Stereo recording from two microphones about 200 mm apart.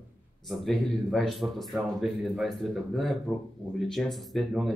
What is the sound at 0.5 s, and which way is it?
Speech, centre (ahead or behind).